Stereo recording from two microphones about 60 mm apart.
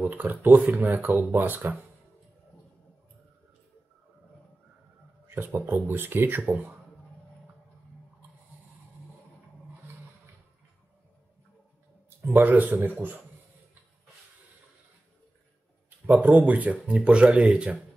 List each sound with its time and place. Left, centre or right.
0.0 s speech: right
5.3 s speech: right
6.4 s speech: right
12.4 s speech: right
16.2 s speech: right